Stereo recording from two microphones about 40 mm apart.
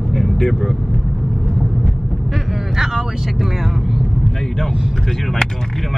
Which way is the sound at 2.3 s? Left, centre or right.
Centre.